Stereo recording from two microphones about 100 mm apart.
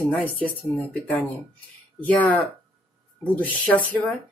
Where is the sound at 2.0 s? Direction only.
15° left (ahead or behind).